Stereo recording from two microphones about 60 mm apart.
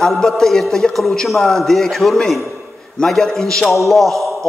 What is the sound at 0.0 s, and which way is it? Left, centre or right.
A man's voice, centre.